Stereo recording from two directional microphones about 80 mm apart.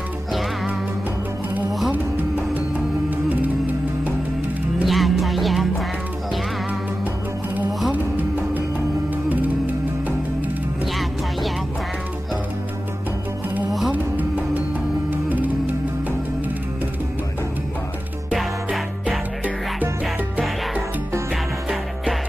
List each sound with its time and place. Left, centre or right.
1.9 s music: centre
4.8 s music: centre
7.9 s music: right
13.7 s music: centre
13.9 s music: right